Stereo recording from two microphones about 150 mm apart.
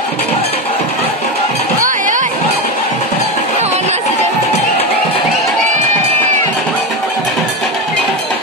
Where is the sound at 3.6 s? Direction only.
45° right (ahead or behind).